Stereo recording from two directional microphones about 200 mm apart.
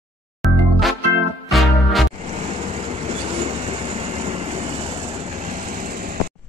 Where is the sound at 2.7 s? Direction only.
35° right (ahead or behind).